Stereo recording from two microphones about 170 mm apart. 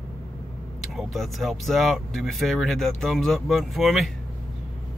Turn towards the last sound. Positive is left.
turn(degrees=0)  # may be behind; listen again after turning